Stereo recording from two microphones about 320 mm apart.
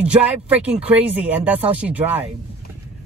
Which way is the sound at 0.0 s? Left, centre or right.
Centre.